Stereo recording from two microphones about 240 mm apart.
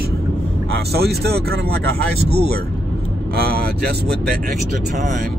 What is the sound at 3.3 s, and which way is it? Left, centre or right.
Speech, right.